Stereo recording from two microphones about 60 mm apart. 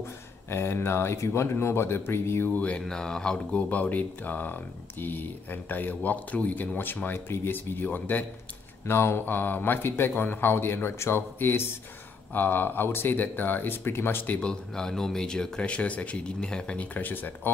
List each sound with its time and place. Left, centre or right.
0.5 s speech: left
2.5 s speech: left
2.8 s speech: centre; by 8.3 s left
8.8 s speech: left
14.4 s speech: centre; by 17.5 s left